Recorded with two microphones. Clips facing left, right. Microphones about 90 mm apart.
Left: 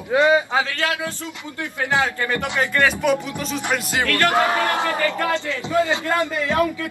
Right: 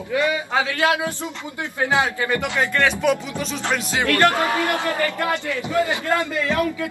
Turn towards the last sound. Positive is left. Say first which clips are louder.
# left 2 dB
turn(degrees=25)  # may be behind; listen again after turning